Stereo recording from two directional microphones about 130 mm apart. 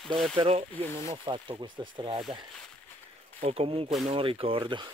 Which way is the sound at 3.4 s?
50° right (ahead or behind).